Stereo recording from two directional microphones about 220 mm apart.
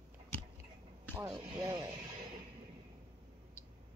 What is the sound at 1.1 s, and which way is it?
Speech, 15° right (ahead or behind).